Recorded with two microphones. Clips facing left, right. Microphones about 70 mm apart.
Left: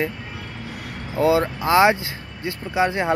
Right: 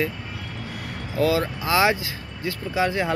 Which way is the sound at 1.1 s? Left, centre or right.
Left.